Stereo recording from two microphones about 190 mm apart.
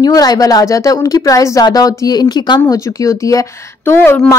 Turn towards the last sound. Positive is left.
turn(degrees=10)  # may be behind; listen again after turning